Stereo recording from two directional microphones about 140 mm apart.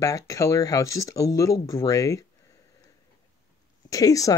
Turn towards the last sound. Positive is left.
turn(degrees=25)  # may be behind; listen again after turning